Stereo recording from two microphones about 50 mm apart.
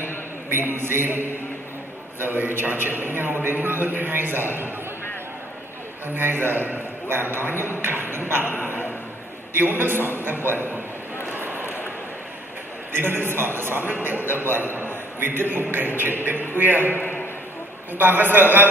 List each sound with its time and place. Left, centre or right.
0.5 s a man's voice: right
6.0 s a man's voice: right
9.5 s a man's voice: right
11.2 s a sound: right
12.9 s a man's voice: right
17.9 s a man's voice: right